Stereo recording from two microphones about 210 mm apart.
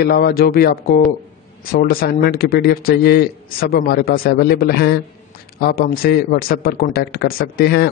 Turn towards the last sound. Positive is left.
turn(degrees=50)  # may be behind; listen again after turning